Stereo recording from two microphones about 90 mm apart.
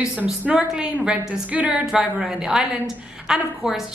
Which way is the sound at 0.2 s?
15° right (ahead or behind).